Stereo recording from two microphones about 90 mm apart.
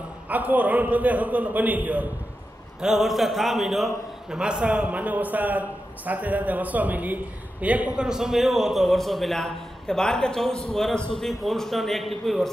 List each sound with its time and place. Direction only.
0.3 s a man's voice: 20° right (ahead or behind)
2.8 s a man's voice: centre (ahead or behind)